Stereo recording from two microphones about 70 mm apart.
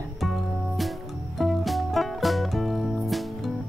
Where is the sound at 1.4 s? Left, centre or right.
Centre.